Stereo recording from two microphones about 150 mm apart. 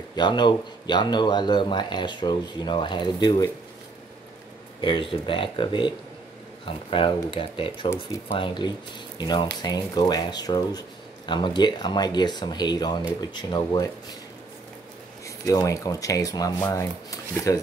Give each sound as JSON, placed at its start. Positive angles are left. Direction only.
{"t": 0.1, "sound": "speech", "side_deg": 30}
{"t": 4.8, "sound": "speech", "side_deg": 35}
{"t": 15.2, "sound": "speech", "side_deg": 20}